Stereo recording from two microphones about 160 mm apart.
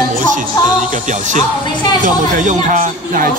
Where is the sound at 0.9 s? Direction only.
50° right (ahead or behind).